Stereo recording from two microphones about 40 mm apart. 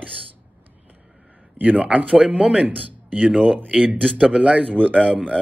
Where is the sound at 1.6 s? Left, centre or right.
Right.